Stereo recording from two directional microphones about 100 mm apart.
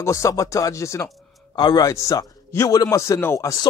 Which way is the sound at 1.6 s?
45° left (ahead or behind).